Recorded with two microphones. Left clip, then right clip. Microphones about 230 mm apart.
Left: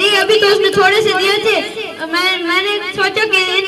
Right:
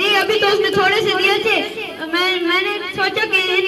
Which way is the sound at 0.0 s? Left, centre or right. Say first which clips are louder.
Left 4 dB; left.